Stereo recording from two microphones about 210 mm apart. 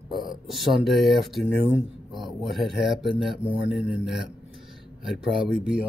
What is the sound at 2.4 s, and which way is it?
Speech, centre (ahead or behind).